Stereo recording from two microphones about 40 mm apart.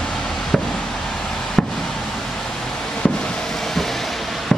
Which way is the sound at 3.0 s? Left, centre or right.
Left.